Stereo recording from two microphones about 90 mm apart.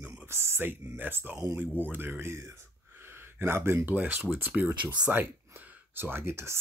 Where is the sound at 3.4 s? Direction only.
25° right (ahead or behind).